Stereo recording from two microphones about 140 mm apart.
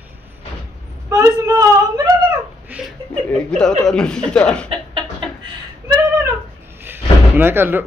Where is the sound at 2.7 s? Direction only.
10° right (ahead or behind).